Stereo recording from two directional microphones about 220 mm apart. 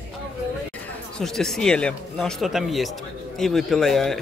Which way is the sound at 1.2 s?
Centre (ahead or behind).